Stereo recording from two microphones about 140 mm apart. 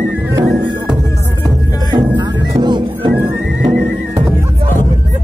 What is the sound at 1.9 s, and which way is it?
Music, 30° right (ahead or behind).